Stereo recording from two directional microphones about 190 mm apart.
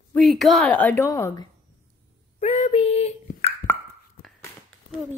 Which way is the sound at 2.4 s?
30° left (ahead or behind).